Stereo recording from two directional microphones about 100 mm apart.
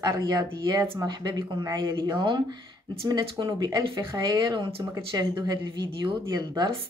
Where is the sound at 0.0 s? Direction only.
40° right (ahead or behind).